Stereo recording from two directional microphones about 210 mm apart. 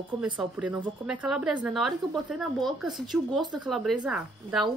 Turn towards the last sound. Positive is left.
turn(degrees=0)  # may be behind; listen again after turning